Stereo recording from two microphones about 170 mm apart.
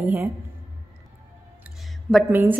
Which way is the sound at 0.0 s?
15° right (ahead or behind).